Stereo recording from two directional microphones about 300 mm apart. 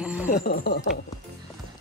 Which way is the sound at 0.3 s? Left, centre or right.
Left.